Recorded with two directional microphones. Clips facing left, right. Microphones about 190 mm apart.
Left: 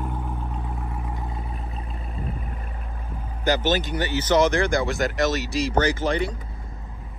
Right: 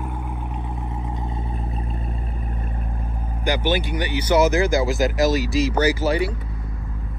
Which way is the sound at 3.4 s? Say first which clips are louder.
Even; 10° right (ahead or behind).